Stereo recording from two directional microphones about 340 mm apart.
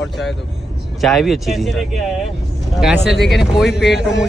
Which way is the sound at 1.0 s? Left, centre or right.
Centre.